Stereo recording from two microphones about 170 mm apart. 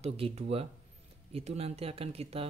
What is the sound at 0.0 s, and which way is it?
A man's voice, 40° right (ahead or behind).